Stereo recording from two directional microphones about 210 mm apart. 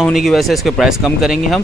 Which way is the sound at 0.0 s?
Centre (ahead or behind).